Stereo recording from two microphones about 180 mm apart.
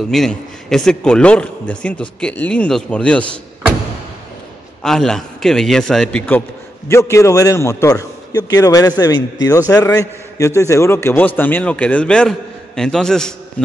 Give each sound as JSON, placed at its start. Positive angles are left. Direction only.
{"t": 0.1, "sound": "a man's voice", "side_deg": 0}
{"t": 4.8, "sound": "a man's voice", "side_deg": 0}